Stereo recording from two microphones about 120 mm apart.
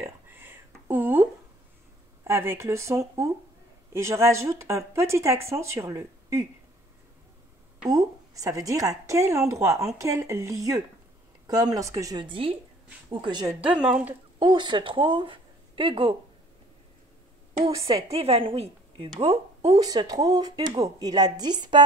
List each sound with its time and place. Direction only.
0.0 s a sound: 15° right (ahead or behind)
2.2 s speech: 20° right (ahead or behind)
7.9 s a woman's voice: 30° right (ahead or behind)
12.3 s a woman's voice: 50° right (ahead or behind)
13.6 s speech: 10° right (ahead or behind)
14.4 s speech: 40° right (ahead or behind)
17.6 s speech: 50° right (ahead or behind)
19.8 s a woman's voice: 30° right (ahead or behind)